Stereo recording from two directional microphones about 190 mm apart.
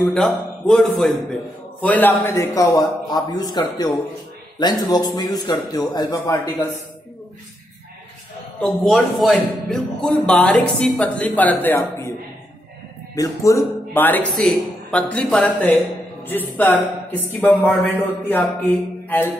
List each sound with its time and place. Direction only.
0.0 s a man's voice: 5° left (ahead or behind); by 6.8 s 20° left (ahead or behind)
8.5 s speech: 5° left (ahead or behind)
13.1 s a man's voice: 15° left (ahead or behind)